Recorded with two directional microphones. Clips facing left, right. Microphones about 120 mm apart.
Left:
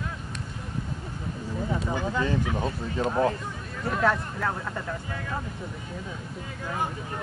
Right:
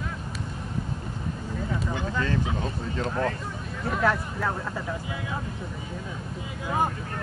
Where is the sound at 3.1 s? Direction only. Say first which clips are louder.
Left 4 dB; 25° left (ahead or behind).